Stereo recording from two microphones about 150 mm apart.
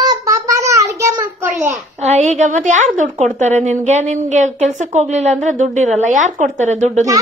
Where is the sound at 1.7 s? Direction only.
50° right (ahead or behind).